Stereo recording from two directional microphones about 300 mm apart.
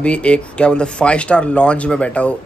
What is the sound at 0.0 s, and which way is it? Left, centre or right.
Speech, centre.